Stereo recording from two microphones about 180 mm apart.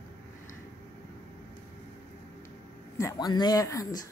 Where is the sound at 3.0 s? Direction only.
20° left (ahead or behind).